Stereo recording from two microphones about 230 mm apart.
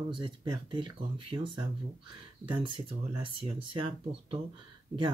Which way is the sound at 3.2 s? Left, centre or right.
Right.